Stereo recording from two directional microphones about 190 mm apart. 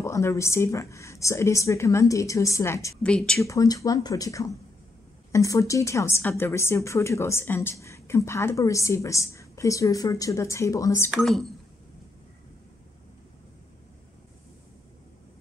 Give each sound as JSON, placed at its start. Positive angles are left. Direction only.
{"t": 0.0, "sound": "a woman's voice", "side_deg": 15}
{"t": 3.0, "sound": "a woman's voice", "side_deg": 5}
{"t": 3.4, "sound": "a woman's voice", "side_deg": 20}
{"t": 11.1, "sound": "a woman's voice", "side_deg": 0}